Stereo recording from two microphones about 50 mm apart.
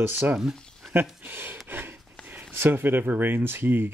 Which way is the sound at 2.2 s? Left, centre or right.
Right.